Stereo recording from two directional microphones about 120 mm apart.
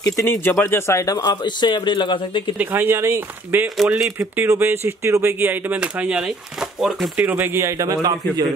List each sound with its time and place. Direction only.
0.0 s speech: 25° left (ahead or behind); by 2.5 s 40° left (ahead or behind)
2.5 s speech: 15° right (ahead or behind)
3.6 s speech: centre (ahead or behind)
4.2 s speech: 20° right (ahead or behind); by 7.1 s centre (ahead or behind)
7.2 s a man's voice: 15° right (ahead or behind)